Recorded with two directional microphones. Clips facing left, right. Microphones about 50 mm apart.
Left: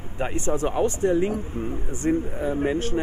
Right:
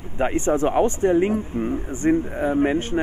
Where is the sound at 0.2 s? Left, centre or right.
Right.